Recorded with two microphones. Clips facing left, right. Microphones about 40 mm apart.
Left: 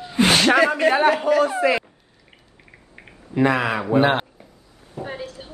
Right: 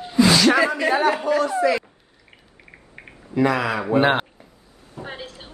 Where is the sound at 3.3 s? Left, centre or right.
Left.